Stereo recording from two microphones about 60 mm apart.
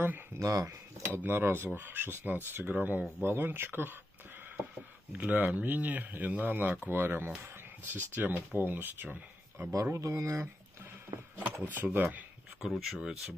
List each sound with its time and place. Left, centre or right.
0.4 s speech: right
1.1 s speech: right
5.1 s speech: right
9.6 s speech: right
9.9 s speech: right
11.3 s a sound: right
11.7 s speech: right
12.7 s speech: centre